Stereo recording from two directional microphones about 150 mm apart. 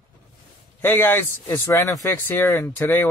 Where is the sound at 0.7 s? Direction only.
15° left (ahead or behind).